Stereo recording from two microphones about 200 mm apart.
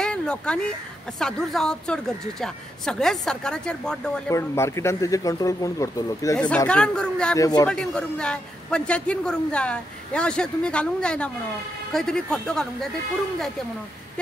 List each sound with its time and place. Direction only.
0.0 s a sound: 5° left (ahead or behind)
1.2 s a man's voice: 5° left (ahead or behind)
4.3 s speech: 15° left (ahead or behind)
6.5 s a man's voice: 5° left (ahead or behind)
7.3 s speech: 15° left (ahead or behind)
7.6 s a man's voice: 5° left (ahead or behind)